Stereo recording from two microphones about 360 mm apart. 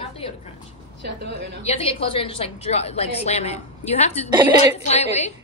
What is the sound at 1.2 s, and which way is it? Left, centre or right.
Speech, right.